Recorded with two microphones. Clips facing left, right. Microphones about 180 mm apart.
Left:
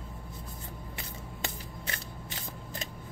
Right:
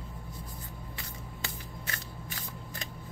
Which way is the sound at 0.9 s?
20° left (ahead or behind).